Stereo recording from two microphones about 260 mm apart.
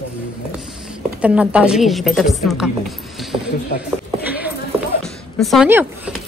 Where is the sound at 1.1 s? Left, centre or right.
Centre.